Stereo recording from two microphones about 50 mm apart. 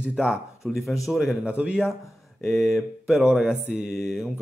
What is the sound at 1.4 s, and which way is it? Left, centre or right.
Speech, right.